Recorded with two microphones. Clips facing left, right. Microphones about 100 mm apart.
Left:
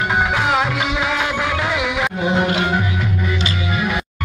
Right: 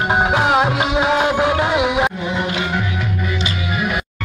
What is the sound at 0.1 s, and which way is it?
Music, 30° right (ahead or behind).